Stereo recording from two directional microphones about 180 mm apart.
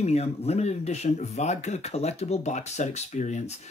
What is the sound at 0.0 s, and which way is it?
Speech, 35° left (ahead or behind).